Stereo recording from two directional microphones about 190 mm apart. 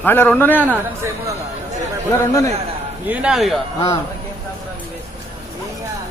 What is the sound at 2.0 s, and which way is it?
Speech, 15° left (ahead or behind).